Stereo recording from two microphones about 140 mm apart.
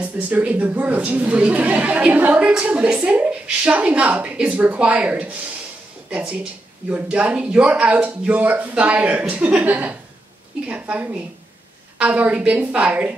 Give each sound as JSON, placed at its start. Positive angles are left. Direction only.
{"t": 0.0, "sound": "speech", "side_deg": -10}